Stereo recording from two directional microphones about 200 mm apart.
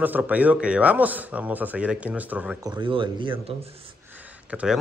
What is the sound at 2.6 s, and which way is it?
Speech, 25° right (ahead or behind).